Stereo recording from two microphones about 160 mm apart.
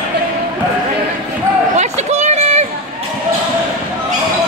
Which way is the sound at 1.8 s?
45° right (ahead or behind).